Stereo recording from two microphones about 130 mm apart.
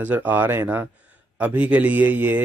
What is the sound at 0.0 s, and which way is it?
A man's voice, 15° right (ahead or behind).